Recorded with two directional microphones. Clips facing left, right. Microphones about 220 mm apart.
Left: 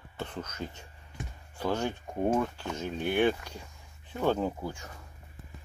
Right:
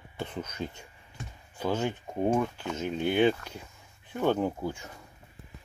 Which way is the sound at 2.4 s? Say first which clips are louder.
Right 1 dB; 10° right (ahead or behind).